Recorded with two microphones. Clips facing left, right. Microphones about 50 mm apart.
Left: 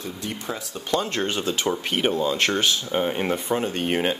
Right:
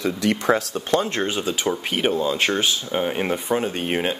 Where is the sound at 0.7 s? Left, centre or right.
Right.